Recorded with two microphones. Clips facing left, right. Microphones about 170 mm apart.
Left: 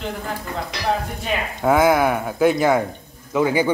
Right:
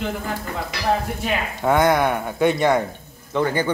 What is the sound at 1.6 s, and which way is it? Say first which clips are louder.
A man's voice: left 2 dB; centre (ahead or behind).